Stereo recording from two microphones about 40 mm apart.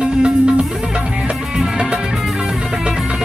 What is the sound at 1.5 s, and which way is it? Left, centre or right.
Music, right.